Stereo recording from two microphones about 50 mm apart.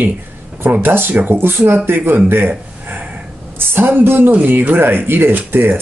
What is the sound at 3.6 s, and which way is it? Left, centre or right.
Speech, right.